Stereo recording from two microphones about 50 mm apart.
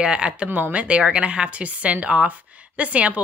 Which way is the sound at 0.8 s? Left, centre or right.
Right.